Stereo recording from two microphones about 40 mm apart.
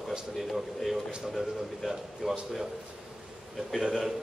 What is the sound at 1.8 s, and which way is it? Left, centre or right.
Speech, centre.